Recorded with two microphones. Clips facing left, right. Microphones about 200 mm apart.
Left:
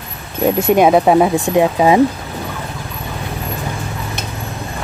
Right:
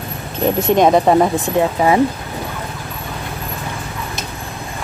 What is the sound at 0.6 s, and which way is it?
Speech, 10° left (ahead or behind).